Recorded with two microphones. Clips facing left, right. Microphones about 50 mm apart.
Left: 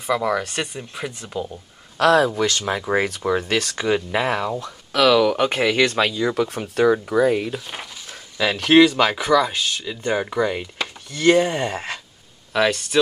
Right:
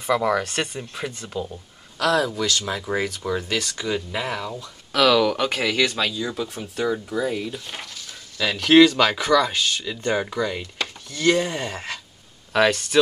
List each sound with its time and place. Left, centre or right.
0.0 s speech: centre
2.0 s speech: left
4.9 s speech: centre
5.4 s speech: left
7.6 s speech: centre
8.1 s speech: left
11.1 s speech: left
12.5 s speech: centre